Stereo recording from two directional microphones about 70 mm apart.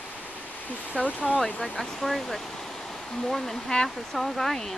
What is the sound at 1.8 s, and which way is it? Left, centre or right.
Speech, centre.